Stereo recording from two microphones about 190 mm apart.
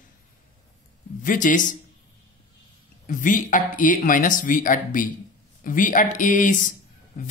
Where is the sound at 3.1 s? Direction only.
45° left (ahead or behind).